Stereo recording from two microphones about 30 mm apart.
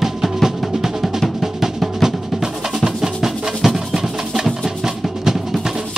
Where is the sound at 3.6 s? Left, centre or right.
Centre.